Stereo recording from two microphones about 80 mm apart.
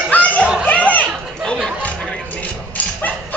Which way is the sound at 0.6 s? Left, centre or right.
Centre.